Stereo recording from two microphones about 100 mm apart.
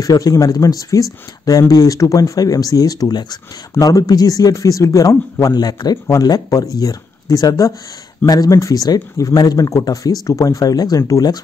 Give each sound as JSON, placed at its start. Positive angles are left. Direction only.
{"t": 0.0, "sound": "speech", "side_deg": 35}